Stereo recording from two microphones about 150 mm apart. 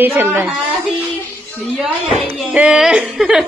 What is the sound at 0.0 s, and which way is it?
Speech, 15° right (ahead or behind).